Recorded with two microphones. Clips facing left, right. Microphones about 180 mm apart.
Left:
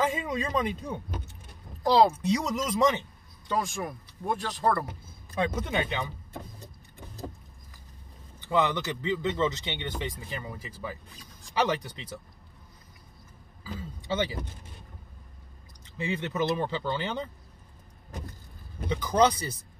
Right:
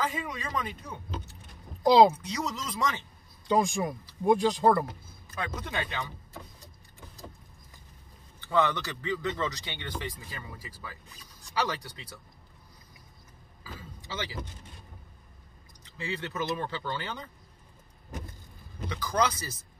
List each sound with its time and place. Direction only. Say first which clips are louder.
0.0 s speech: left 5 dB; 25° left (ahead or behind)
1.8 s speech: right 2 dB; 15° right (ahead or behind)
2.2 s speech: left 7 dB; 20° left (ahead or behind)
3.4 s speech: right 4 dB; 15° right (ahead or behind)
5.3 s speech: left 6 dB; 25° left (ahead or behind)
8.4 s speech: left 1 dB; 15° left (ahead or behind)
13.7 s a sound: left 9 dB; 25° left (ahead or behind)
16.0 s speech: left 5 dB; 20° left (ahead or behind)
18.9 s speech: left 5 dB; 25° left (ahead or behind)